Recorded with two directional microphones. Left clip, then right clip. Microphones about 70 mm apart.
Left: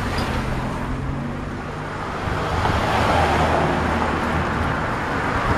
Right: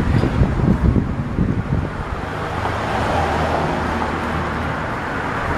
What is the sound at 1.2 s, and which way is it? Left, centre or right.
Vehicle, left.